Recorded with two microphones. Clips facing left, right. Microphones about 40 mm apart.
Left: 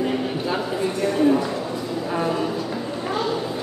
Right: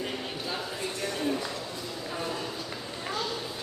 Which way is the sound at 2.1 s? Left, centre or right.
Left.